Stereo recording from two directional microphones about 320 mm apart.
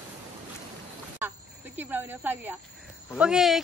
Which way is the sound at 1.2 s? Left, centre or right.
Centre.